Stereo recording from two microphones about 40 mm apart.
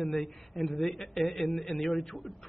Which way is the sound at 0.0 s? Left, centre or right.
Centre.